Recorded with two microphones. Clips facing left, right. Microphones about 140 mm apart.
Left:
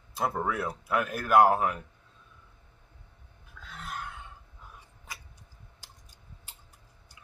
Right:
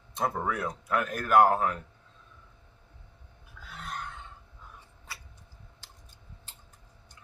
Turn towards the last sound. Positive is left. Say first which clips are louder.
# right 1 dB
turn(degrees=10)  # may be behind; listen again after turning